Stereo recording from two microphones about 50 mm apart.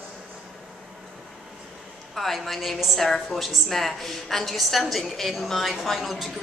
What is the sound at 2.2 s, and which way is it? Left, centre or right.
A woman's voice, centre.